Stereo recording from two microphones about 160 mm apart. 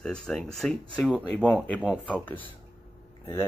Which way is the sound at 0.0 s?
5° left (ahead or behind).